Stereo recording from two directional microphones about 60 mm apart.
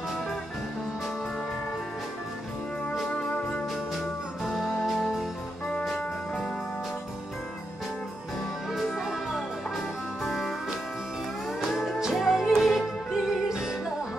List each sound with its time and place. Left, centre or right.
3.2 s music: left
4.5 s music: centre
5.7 s music: centre
8.7 s music: centre
11.7 s music: centre